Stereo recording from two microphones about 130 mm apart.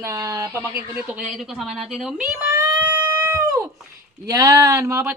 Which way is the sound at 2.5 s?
30° right (ahead or behind).